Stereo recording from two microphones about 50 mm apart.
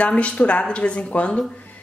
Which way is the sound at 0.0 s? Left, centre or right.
Left.